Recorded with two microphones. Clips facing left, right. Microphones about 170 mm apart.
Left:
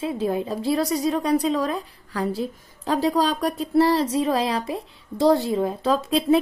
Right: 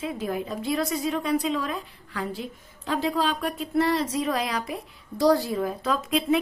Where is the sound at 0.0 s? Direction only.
30° left (ahead or behind).